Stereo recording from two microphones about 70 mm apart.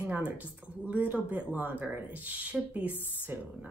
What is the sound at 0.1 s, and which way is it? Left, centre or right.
A woman's voice, centre.